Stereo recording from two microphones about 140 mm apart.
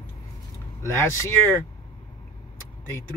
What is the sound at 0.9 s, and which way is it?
Speech, 20° left (ahead or behind).